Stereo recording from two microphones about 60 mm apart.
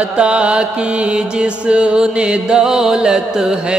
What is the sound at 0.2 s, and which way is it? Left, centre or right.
Music, centre.